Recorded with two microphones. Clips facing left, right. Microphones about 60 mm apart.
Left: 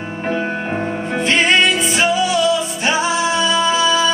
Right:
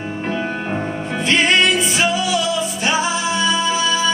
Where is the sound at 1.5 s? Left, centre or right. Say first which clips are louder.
Left 1 dB; centre.